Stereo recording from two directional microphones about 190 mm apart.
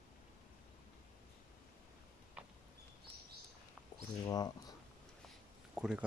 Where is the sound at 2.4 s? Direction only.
5° right (ahead or behind).